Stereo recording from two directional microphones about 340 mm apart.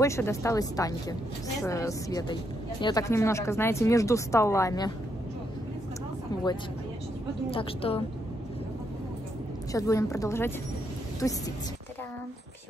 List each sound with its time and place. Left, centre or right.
0.0 s speech: centre
7.5 s speech: centre
9.7 s speech: centre